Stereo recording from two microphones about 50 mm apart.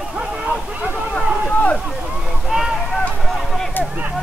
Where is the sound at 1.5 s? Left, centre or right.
Left.